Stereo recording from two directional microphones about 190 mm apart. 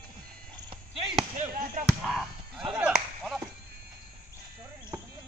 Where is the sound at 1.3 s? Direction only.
45° right (ahead or behind).